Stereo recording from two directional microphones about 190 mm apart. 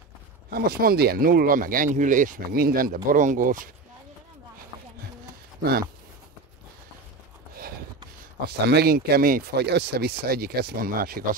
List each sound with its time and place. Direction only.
0.5 s speech: 55° right (ahead or behind)
5.6 s speech: 55° right (ahead or behind)
8.6 s speech: 55° right (ahead or behind)